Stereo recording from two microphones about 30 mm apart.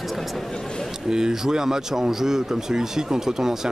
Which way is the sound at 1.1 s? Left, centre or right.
Right.